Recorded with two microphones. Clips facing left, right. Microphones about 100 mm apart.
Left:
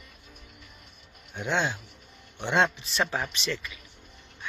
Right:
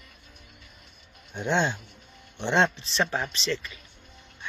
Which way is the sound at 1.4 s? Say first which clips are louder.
Right 2 dB; 5° left (ahead or behind).